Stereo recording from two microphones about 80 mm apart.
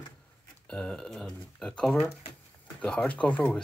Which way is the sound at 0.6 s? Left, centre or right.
Centre.